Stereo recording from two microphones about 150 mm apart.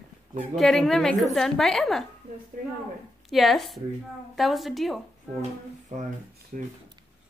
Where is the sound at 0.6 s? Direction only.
Centre (ahead or behind).